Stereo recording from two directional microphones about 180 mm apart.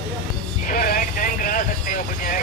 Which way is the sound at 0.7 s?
50° left (ahead or behind).